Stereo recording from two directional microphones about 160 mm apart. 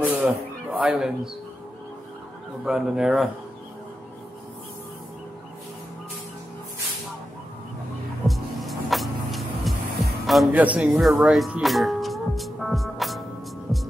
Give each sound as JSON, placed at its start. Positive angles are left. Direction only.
{"t": 0.0, "sound": "a man's voice", "side_deg": -10}
{"t": 2.6, "sound": "speech", "side_deg": -5}
{"t": 8.3, "sound": "music", "side_deg": 0}
{"t": 10.2, "sound": "speech", "side_deg": 0}